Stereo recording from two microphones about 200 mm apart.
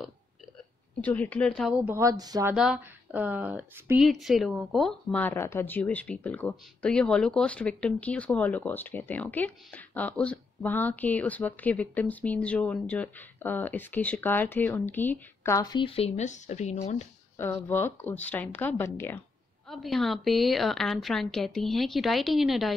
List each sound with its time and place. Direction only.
1.0 s speech: 10° left (ahead or behind)
1.9 s speech: 15° right (ahead or behind)
2.5 s speech: 5° right (ahead or behind); by 17.1 s 35° left (ahead or behind)
17.4 s a woman's voice: 10° left (ahead or behind)